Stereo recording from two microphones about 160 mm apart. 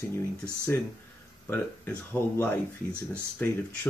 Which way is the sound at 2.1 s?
15° left (ahead or behind).